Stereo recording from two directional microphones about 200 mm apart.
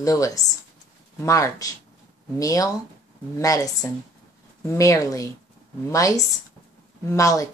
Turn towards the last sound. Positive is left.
turn(degrees=15)  # may be behind; listen again after turning